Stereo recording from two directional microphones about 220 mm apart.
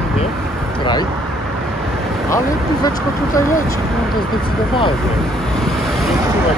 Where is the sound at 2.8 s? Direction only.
15° left (ahead or behind).